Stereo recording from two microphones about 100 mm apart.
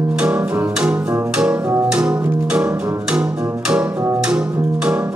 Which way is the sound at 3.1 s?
10° right (ahead or behind).